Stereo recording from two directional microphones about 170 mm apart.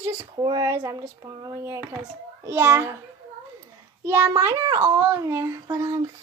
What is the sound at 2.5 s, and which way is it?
Speech, 15° right (ahead or behind).